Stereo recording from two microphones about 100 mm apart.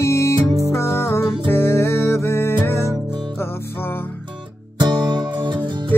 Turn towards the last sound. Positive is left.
turn(degrees=-45)  # may be behind; listen again after turning